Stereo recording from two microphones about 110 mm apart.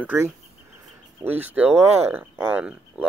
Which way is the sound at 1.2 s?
15° right (ahead or behind).